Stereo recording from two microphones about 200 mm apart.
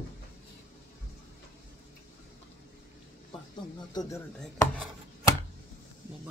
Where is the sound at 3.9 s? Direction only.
15° left (ahead or behind).